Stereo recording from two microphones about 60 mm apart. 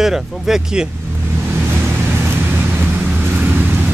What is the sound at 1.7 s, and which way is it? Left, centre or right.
Vehicle, right.